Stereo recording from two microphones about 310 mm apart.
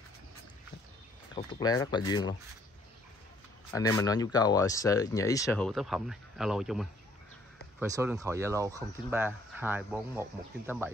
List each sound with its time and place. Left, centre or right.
1.3 s speech: centre
3.7 s speech: centre